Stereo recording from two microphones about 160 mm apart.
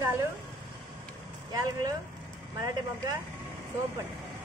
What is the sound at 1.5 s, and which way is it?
Speech, 25° right (ahead or behind).